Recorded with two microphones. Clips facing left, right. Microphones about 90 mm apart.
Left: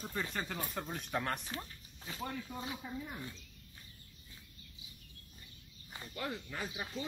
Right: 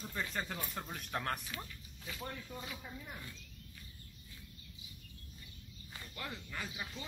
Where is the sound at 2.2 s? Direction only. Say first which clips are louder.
Left 4 dB; 20° left (ahead or behind).